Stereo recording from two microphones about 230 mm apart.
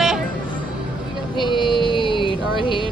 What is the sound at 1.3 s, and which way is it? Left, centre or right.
Child singing, left.